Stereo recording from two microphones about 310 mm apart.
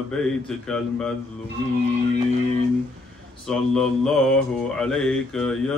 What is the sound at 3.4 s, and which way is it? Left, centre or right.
Mantra, centre.